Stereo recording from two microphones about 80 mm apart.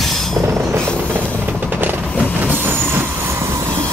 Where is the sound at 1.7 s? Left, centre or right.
Right.